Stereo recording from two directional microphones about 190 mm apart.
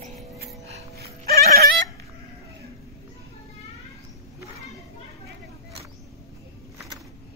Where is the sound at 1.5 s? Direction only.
55° right (ahead or behind).